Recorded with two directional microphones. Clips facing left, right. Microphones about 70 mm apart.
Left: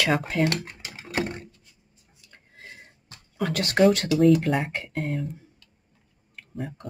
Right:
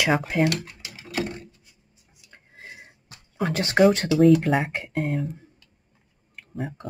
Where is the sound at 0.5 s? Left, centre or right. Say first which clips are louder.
Even; left.